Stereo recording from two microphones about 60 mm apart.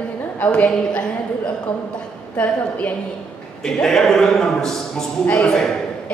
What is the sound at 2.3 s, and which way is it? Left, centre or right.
Speech, left.